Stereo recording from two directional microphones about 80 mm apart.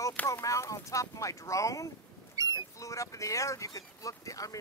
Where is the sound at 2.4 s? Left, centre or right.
Right.